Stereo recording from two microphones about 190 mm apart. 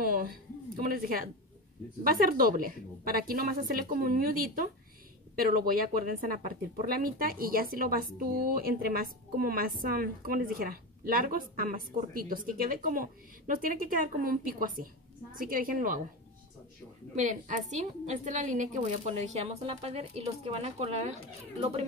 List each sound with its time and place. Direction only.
0.0 s a woman's voice: 50° right (ahead or behind)
17.1 s a woman's voice: 40° right (ahead or behind)